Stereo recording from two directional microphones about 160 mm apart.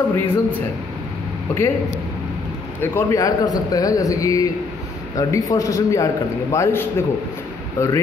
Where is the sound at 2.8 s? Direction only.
15° left (ahead or behind).